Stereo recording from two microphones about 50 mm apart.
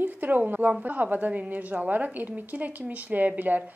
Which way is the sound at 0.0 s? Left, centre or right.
Right.